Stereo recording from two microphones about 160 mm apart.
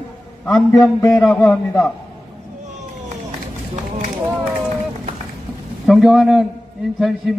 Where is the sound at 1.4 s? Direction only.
15° left (ahead or behind).